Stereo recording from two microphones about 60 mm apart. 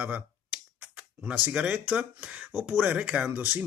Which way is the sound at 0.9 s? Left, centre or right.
Centre.